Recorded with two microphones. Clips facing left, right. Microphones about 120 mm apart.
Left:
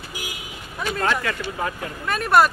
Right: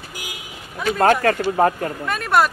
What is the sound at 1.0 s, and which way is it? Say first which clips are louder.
Speech: right 9 dB; 45° right (ahead or behind).